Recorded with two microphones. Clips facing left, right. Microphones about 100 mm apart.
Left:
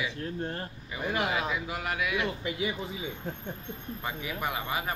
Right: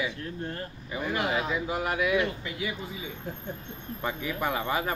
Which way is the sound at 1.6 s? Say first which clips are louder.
Right 5 dB; 25° right (ahead or behind).